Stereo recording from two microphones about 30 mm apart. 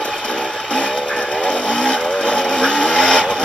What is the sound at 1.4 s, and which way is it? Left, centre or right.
Vehicle, left.